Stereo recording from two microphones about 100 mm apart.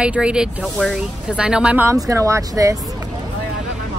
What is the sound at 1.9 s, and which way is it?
Speech, 35° right (ahead or behind).